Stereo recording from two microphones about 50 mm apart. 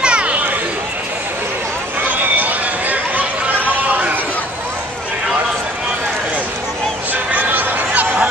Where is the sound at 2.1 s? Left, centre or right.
Right.